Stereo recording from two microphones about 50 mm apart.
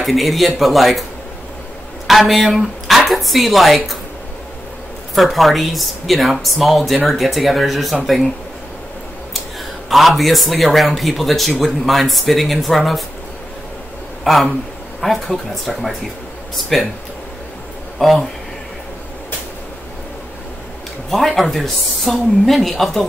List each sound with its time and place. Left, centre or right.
0.0 s a man's voice: centre
2.0 s speech: centre
5.1 s a man's voice: centre
9.8 s a man's voice: centre
14.2 s a man's voice: centre
17.9 s a man's voice: centre
21.4 s a man's voice: centre